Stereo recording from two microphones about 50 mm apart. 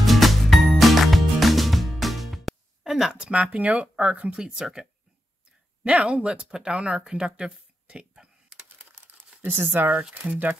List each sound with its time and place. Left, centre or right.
0.0 s music: centre
3.2 s speech: right
4.4 s speech: centre
5.9 s speech: right
9.6 s speech: right